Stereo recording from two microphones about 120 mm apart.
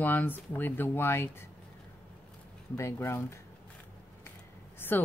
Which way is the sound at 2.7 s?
20° left (ahead or behind).